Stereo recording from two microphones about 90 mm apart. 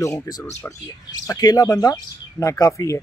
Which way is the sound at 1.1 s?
45° left (ahead or behind).